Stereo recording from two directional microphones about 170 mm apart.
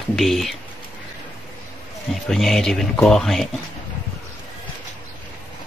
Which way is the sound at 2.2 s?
Centre (ahead or behind).